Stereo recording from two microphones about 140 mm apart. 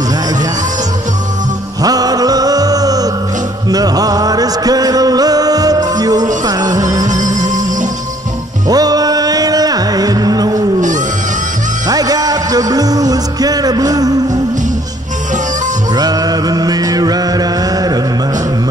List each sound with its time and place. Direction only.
1.8 s music: 25° right (ahead or behind)
8.6 s music: 25° right (ahead or behind)
11.9 s music: 25° right (ahead or behind)
15.9 s mantra: 25° right (ahead or behind)